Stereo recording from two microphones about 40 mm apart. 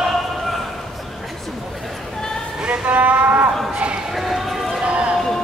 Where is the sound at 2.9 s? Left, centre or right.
Right.